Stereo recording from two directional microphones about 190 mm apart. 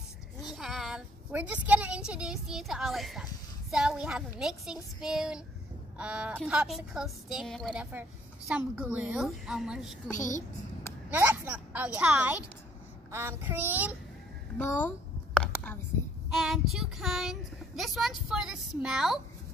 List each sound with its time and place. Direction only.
0.5 s a woman's voice: centre (ahead or behind)
10.1 s a child's voice: 15° left (ahead or behind)
11.1 s a woman's voice: 10° right (ahead or behind)
14.6 s a child's voice: 10° left (ahead or behind)
15.3 s a sound: 5° left (ahead or behind)
16.3 s speech: centre (ahead or behind)